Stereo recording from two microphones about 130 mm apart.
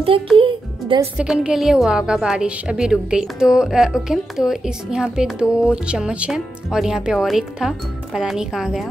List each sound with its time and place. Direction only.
0.4 s music: 40° right (ahead or behind)
1.1 s a woman's voice: 5° right (ahead or behind)